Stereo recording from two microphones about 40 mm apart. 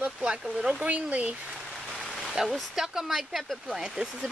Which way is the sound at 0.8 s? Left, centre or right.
Right.